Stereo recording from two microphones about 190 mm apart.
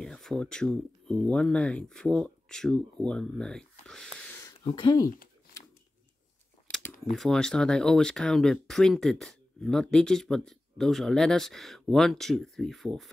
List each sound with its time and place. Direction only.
0.0 s speech: 5° left (ahead or behind)
4.6 s speech: 25° left (ahead or behind)
6.7 s speech: 5° left (ahead or behind)